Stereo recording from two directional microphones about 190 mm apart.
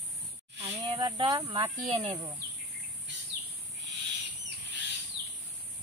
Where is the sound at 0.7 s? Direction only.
20° right (ahead or behind).